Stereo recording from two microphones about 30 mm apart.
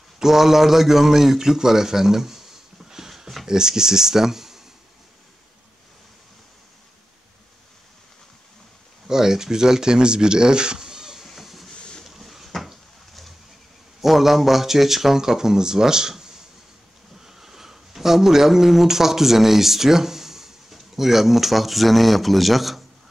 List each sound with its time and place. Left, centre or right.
0.2 s a man's voice: centre
9.0 s speech: centre
11.3 s train: centre
12.0 s a sound: centre
14.0 s speech: centre
15.1 s speech: centre
17.3 s speech: centre